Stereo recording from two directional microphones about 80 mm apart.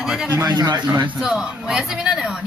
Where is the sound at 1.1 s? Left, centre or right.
Centre.